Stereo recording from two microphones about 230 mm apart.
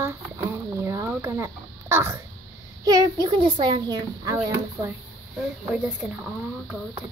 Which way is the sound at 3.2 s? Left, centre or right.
Centre.